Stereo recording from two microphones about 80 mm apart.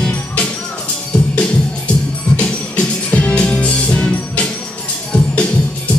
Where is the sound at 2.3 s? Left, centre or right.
Centre.